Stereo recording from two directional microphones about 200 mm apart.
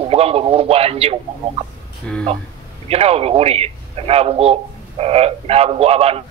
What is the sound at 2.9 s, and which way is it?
A man's voice, 30° right (ahead or behind).